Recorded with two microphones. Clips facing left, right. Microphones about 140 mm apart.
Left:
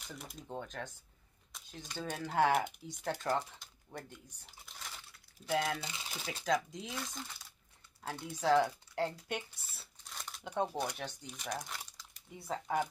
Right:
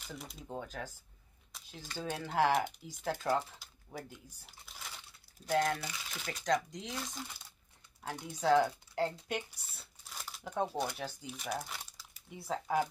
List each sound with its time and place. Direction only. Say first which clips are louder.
0.0 s speech: right 1 dB; centre (ahead or behind)
1.5 s a sound: left 1 dB; centre (ahead or behind)
2.0 s speech: even; 5° right (ahead or behind)
5.8 s speech: even; 25° left (ahead or behind)
6.4 s speech: right 1 dB; 5° left (ahead or behind)
9.6 s crumpling: right 1 dB; centre (ahead or behind)
10.8 s speech: right 1 dB; 5° right (ahead or behind)